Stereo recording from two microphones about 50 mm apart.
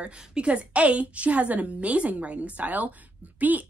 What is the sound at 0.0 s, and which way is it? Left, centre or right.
A woman's voice, right.